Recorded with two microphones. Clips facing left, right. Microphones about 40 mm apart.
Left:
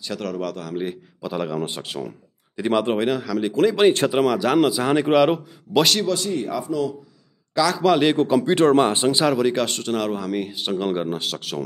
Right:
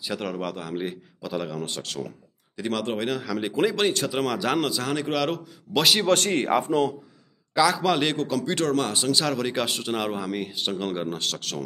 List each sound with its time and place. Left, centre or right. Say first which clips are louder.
0.0 s speech: left 2 dB; centre
1.2 s speech: left 4 dB; centre
3.3 s speech: left 3 dB; centre
4.1 s speech: left 6 dB; centre
6.0 s a man's voice: right 2 dB; right
7.5 s speech: left 3 dB; centre
8.2 s speech: left 8 dB; centre
9.2 s speech: left 7 dB; centre
9.5 s speech: left 4 dB; centre